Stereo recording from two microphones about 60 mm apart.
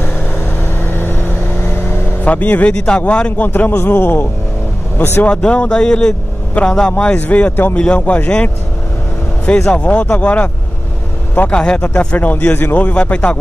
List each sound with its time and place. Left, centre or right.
0.0 s vehicle: left
2.2 s speech: left
3.4 s a man's voice: left
5.2 s speech: centre
9.5 s speech: centre